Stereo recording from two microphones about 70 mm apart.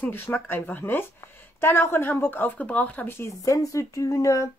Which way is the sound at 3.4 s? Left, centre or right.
Left.